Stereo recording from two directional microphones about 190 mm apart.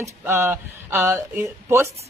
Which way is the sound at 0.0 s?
10° right (ahead or behind).